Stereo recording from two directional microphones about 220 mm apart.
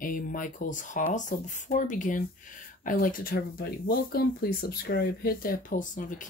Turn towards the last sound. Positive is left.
turn(degrees=35)  # may be behind; listen again after turning